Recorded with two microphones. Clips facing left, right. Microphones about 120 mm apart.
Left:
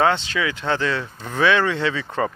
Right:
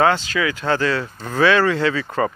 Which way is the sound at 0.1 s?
25° left (ahead or behind).